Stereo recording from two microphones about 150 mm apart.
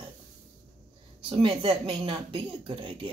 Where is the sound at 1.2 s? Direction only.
35° right (ahead or behind).